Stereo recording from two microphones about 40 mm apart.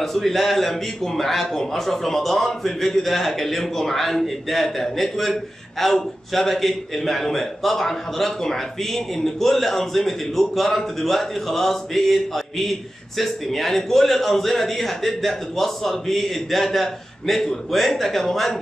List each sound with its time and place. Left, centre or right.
0.0 s a man's voice: centre